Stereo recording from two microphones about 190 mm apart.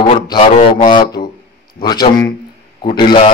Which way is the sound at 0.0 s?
25° left (ahead or behind).